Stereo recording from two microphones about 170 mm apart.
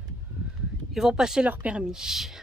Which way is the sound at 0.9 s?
Centre (ahead or behind).